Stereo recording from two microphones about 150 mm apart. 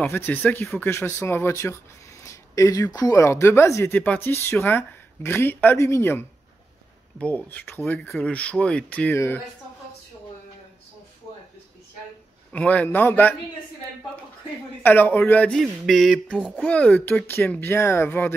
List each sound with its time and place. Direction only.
0.0 s speech: 15° left (ahead or behind)
12.5 s speech: 10° left (ahead or behind)
14.8 s speech: 15° left (ahead or behind); by 16.6 s 5° right (ahead or behind)
16.6 s speech: 10° left (ahead or behind)